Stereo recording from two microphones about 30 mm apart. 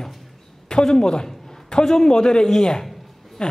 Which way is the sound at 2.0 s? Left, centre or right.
Left.